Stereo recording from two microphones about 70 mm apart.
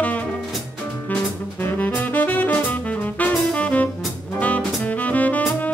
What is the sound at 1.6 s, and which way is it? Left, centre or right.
Saxophone, left.